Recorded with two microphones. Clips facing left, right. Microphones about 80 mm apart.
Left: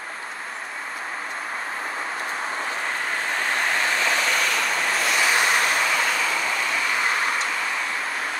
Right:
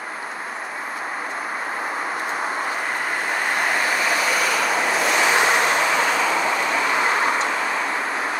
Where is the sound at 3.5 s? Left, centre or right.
Centre.